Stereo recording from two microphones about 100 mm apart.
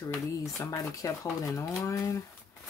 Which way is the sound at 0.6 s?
35° left (ahead or behind).